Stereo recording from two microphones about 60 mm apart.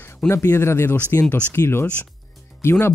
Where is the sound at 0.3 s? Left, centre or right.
Left.